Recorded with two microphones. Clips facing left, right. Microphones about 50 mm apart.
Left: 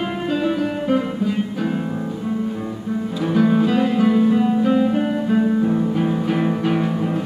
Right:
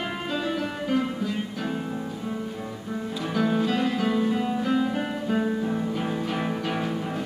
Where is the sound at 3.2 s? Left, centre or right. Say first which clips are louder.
Left 8 dB; centre.